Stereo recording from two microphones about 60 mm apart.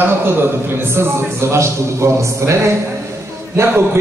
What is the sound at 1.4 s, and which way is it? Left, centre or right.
A man's voice, right.